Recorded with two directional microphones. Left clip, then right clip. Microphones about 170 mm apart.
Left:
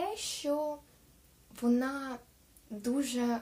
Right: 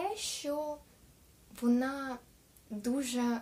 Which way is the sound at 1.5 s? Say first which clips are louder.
Left 1 dB; 10° right (ahead or behind).